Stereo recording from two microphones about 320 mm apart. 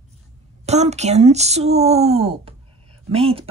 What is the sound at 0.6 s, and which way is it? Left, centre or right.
A woman's voice, right.